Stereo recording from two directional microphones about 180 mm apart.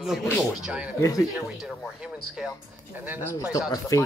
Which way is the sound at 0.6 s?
5° right (ahead or behind).